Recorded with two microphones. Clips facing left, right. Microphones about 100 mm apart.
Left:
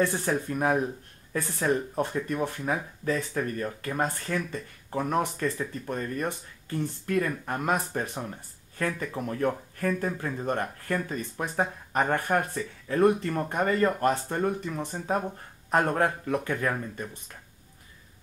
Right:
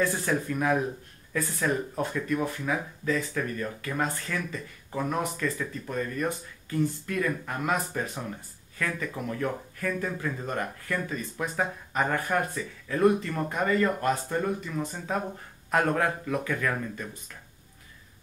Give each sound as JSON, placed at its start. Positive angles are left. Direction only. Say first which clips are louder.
{"t": 0.2, "sound": "speech", "louder": "left 1 dB", "side_deg": 35}
{"t": 11.9, "sound": "speech", "louder": "left 2 dB", "side_deg": 45}